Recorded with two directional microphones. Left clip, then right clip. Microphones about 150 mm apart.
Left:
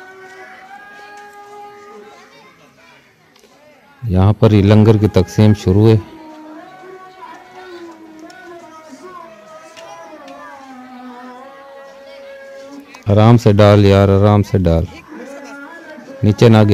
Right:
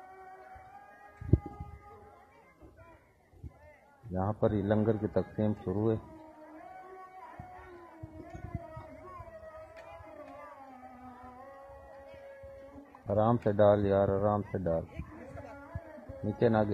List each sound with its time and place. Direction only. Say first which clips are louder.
4.1 s a man's voice: left 17 dB; 15° left (ahead or behind)
13.0 s speech: left 16 dB; 20° left (ahead or behind)
16.3 s a man's voice: left 17 dB; 15° left (ahead or behind)